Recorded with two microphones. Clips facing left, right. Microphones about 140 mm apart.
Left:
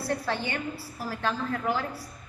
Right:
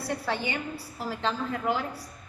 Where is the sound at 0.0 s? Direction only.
10° right (ahead or behind).